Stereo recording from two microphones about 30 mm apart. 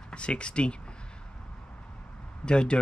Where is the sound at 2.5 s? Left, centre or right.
Left.